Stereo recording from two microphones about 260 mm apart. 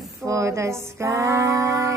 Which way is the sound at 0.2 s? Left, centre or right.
Centre.